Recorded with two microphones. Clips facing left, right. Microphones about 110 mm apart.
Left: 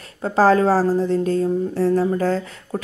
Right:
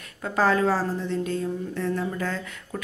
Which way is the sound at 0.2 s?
35° left (ahead or behind).